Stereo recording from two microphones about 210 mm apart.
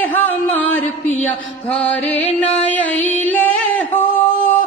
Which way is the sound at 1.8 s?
5° left (ahead or behind).